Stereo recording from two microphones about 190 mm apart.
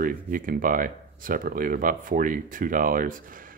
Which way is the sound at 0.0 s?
45° right (ahead or behind).